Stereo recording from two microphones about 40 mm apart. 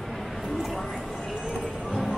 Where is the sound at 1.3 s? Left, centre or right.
Right.